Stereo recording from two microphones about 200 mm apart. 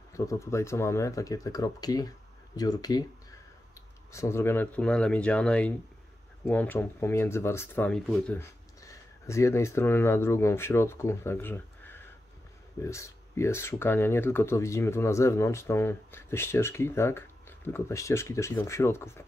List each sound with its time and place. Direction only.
0.1 s speech: 15° left (ahead or behind)
4.1 s speech: 15° left (ahead or behind)